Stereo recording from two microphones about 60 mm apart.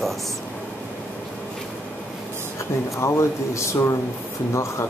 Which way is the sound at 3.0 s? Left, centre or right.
Left.